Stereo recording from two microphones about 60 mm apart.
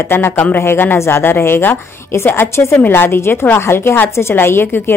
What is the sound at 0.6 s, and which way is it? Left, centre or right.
Speech, left.